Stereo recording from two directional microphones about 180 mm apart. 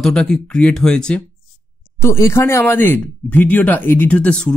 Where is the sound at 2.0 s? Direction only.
15° left (ahead or behind).